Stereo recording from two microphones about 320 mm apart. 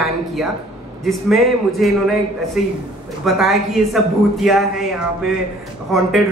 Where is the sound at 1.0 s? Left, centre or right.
Centre.